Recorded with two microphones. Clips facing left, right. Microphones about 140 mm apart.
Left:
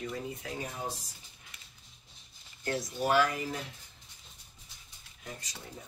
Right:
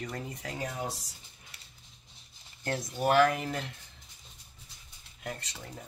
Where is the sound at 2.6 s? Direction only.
55° right (ahead or behind).